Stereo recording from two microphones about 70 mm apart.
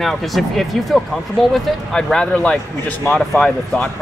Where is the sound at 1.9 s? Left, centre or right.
Centre.